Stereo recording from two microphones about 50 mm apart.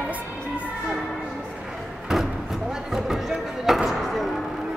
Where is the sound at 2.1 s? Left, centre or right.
Centre.